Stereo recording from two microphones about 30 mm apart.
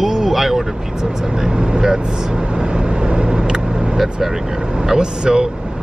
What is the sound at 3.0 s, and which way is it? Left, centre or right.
Vehicle, right.